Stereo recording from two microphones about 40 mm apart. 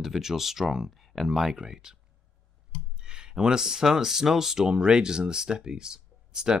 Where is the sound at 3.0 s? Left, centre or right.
Centre.